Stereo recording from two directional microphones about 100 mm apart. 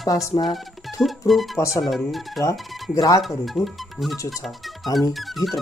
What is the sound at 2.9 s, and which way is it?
Speech, 35° left (ahead or behind).